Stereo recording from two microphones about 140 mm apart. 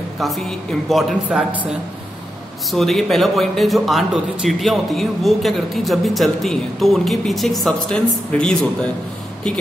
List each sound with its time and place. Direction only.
0.2 s speech: centre (ahead or behind)
1.5 s a woman's voice: 10° right (ahead or behind)
2.7 s speech: centre (ahead or behind)